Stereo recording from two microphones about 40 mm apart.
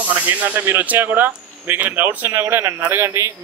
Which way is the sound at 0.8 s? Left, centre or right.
Right.